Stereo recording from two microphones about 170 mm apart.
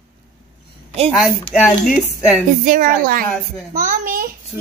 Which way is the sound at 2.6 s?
55° right (ahead or behind).